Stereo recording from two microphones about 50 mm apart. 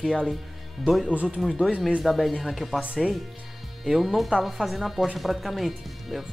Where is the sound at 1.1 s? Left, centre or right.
Right.